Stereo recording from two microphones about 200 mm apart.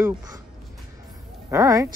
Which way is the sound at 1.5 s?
15° right (ahead or behind).